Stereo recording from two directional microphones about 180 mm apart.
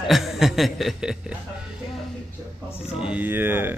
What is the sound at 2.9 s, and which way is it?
Speech, 5° right (ahead or behind).